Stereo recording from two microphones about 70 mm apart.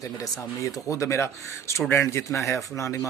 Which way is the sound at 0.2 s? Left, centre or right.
Left.